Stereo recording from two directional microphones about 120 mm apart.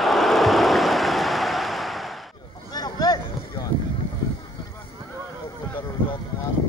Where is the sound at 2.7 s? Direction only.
35° left (ahead or behind).